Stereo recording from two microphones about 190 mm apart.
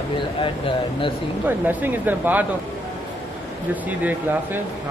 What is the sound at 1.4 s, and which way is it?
Speech, 10° right (ahead or behind).